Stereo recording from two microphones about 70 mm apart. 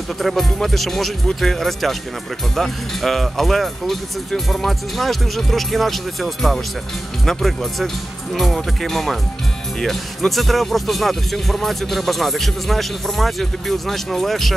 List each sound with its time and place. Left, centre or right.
0.2 s speech: centre